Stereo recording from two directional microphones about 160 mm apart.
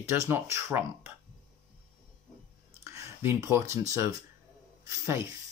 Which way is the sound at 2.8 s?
20° right (ahead or behind).